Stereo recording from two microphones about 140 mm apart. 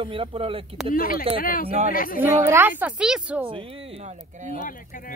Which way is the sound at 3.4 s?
40° right (ahead or behind).